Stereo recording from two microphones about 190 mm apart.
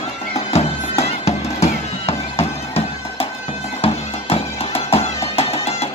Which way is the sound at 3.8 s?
30° left (ahead or behind).